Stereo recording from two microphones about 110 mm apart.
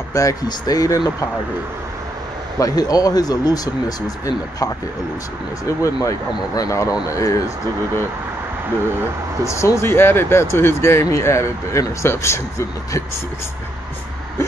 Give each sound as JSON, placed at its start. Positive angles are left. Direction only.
{"t": 0.1, "sound": "speech", "side_deg": 30}
{"t": 2.6, "sound": "speech", "side_deg": 35}
{"t": 5.7, "sound": "speech", "side_deg": 30}
{"t": 9.4, "sound": "speech", "side_deg": 25}